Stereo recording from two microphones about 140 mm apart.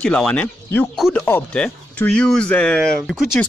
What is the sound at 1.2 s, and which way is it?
Speech, 10° left (ahead or behind).